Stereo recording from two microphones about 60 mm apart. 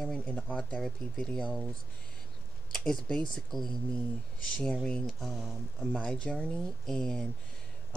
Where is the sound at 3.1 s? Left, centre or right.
Centre.